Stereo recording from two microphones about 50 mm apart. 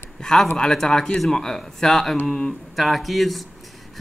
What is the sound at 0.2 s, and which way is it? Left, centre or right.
Speech, centre.